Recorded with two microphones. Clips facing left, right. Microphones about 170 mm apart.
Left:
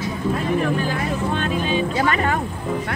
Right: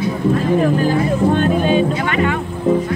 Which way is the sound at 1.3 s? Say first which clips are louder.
Right 7 dB; 50° right (ahead or behind).